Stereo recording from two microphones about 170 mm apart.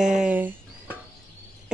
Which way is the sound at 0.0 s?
5° right (ahead or behind).